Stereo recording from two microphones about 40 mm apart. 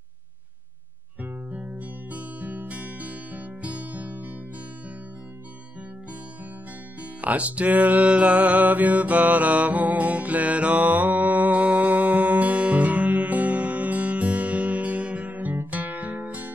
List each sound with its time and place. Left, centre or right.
1.6 s music: right
7.0 s music: right